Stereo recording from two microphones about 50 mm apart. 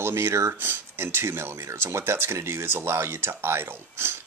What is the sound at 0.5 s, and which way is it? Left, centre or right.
Speech, right.